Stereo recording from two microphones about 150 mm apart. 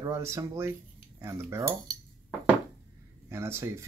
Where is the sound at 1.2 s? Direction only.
20° right (ahead or behind).